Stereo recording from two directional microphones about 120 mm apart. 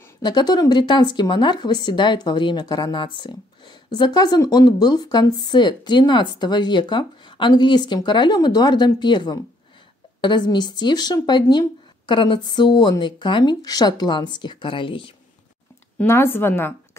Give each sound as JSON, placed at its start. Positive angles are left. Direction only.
{"t": 0.2, "sound": "speech", "side_deg": 35}
{"t": 16.0, "sound": "speech", "side_deg": 20}